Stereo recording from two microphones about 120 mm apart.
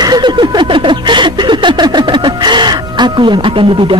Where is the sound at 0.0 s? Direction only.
35° right (ahead or behind).